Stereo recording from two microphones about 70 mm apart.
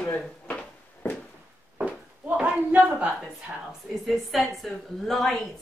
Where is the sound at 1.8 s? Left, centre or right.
Centre.